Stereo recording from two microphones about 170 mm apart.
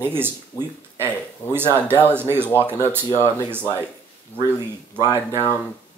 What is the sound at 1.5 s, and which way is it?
Speech, 15° right (ahead or behind).